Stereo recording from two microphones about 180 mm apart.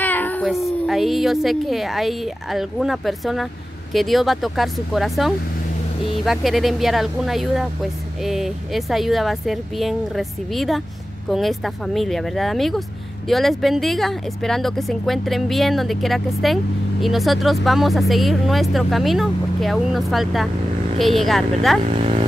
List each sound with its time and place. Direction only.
0.0 s cat: 10° left (ahead or behind)
0.8 s speech: centre (ahead or behind)
21.8 s speech: 35° right (ahead or behind)